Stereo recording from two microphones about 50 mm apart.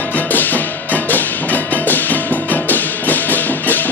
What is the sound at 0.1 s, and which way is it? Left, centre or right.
Music, left.